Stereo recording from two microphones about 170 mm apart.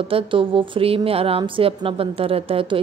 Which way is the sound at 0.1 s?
30° right (ahead or behind).